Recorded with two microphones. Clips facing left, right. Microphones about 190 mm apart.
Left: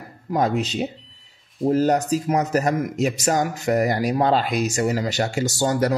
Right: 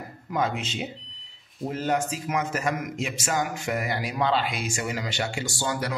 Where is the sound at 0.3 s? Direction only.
40° left (ahead or behind).